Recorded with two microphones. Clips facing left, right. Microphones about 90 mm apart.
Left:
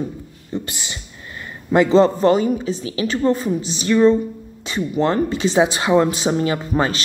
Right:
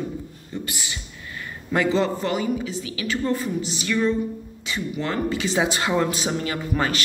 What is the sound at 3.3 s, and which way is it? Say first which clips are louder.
Speech: left 6 dB; 20° left (ahead or behind).